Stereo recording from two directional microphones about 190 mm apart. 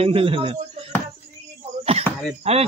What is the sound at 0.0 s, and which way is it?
Speech, 30° right (ahead or behind).